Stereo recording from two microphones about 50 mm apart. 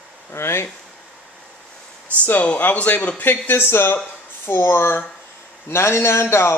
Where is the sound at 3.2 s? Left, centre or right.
Left.